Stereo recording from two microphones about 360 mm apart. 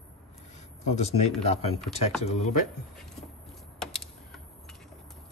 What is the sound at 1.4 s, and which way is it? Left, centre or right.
Speech, centre.